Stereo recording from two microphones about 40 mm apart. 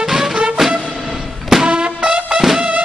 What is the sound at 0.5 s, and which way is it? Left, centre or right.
Music, centre.